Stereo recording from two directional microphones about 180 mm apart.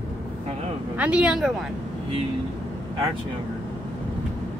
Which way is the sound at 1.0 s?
5° right (ahead or behind).